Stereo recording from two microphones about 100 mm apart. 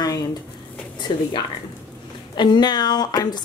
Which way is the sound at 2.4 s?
45° left (ahead or behind).